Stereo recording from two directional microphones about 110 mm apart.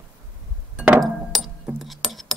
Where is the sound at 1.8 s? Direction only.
Centre (ahead or behind).